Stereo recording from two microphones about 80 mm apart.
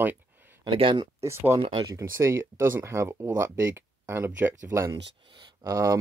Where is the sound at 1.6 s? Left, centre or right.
Right.